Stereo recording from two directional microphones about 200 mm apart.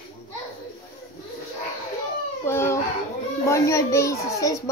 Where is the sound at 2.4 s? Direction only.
10° left (ahead or behind).